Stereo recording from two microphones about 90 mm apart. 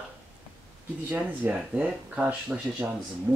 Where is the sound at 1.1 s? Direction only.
20° right (ahead or behind).